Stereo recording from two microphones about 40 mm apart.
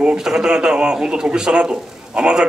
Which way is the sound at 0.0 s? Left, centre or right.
Centre.